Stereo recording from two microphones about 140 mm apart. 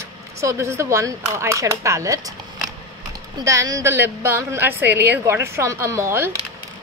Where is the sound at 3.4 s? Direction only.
25° right (ahead or behind).